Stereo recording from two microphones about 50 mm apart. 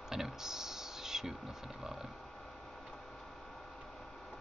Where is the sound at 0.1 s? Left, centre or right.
Centre.